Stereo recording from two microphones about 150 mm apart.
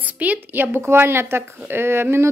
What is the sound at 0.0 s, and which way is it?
Speech, 10° right (ahead or behind).